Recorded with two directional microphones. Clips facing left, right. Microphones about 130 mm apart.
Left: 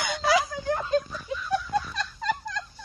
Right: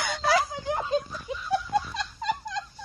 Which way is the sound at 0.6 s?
20° right (ahead or behind).